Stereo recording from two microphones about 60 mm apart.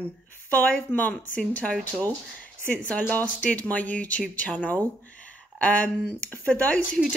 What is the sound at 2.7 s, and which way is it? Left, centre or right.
Speech, left.